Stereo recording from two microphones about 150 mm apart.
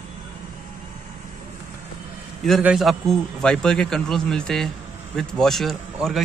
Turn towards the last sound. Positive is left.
turn(degrees=0)  # may be behind; listen again after turning